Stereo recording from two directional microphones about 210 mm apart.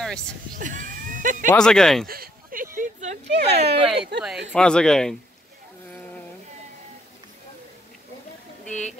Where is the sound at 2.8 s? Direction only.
35° right (ahead or behind).